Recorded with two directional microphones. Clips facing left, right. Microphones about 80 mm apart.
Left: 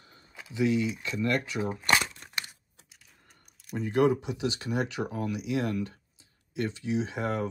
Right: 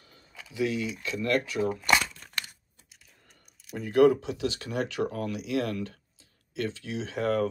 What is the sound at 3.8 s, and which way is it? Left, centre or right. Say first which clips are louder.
Speech: right 4 dB; left.